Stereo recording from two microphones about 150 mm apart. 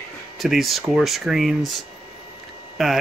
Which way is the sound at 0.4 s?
Centre (ahead or behind).